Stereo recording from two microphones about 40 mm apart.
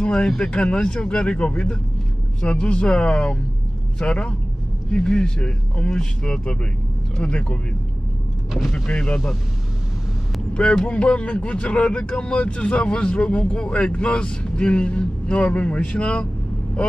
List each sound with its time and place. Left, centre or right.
0.0 s speech: left
8.6 s speech: centre
10.5 s speech: left